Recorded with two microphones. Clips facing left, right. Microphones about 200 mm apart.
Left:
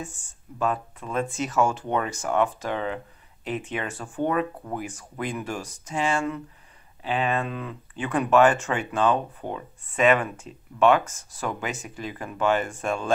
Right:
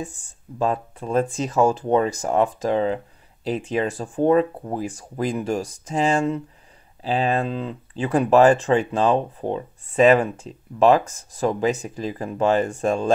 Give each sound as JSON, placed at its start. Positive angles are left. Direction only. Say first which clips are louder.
{"t": 0.6, "sound": "speech", "louder": "right 4 dB", "side_deg": -35}